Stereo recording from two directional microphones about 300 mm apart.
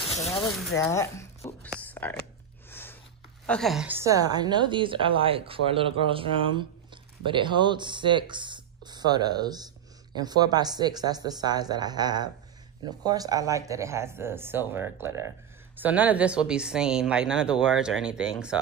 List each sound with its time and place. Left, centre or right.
0.3 s speech: centre
1.8 s a sound: centre
3.4 s a woman's voice: centre